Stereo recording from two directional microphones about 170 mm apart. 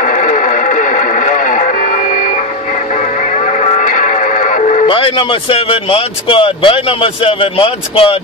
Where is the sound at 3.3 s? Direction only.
40° left (ahead or behind).